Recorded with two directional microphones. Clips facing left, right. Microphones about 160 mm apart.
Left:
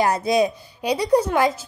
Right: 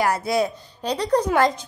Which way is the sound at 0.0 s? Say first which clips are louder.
Left 2 dB; 20° left (ahead or behind).